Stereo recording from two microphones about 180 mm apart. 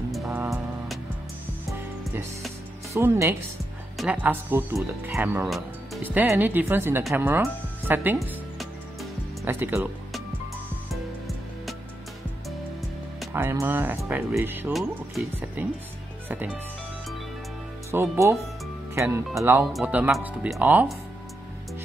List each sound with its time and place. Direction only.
0.1 s music: centre (ahead or behind)
2.9 s speech: 15° right (ahead or behind)
9.4 s speech: 15° right (ahead or behind)
13.3 s speech: 15° right (ahead or behind)
14.7 s speech: centre (ahead or behind)
17.9 s speech: 15° right (ahead or behind)